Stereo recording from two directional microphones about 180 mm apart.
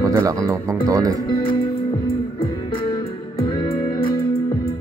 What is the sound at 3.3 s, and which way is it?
Music, 30° left (ahead or behind).